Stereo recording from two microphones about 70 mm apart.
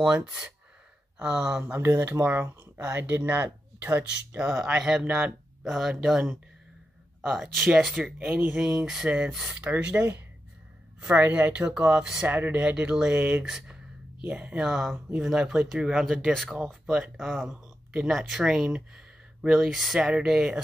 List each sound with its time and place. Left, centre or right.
0.0 s speech: centre
1.8 s speech: right
4.4 s speech: centre
9.9 s speech: right
11.5 s speech: centre
12.3 s speech: right; by 20.6 s centre